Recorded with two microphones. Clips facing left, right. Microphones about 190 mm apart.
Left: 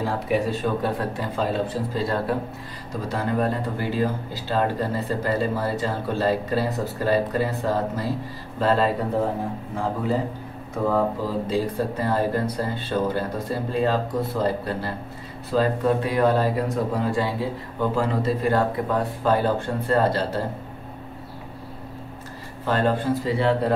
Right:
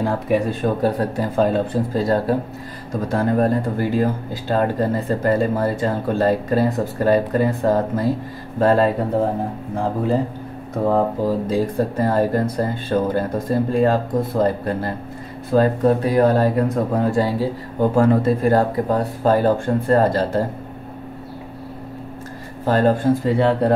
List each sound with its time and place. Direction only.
0.0 s speech: 55° right (ahead or behind)
0.8 s speech: 40° right (ahead or behind)
10.7 s speech: 40° right (ahead or behind)
22.7 s speech: 45° right (ahead or behind)